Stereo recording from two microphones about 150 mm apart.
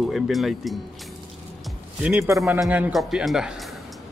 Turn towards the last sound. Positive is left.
turn(degrees=0)  # may be behind; listen again after turning